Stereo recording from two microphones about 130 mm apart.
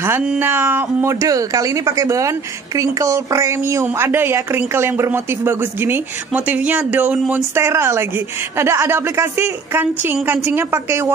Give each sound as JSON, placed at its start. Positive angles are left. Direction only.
{"t": 0.4, "sound": "speech", "side_deg": -15}